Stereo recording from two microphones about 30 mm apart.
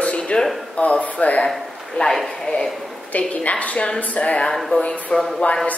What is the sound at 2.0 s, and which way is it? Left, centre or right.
Speech, left.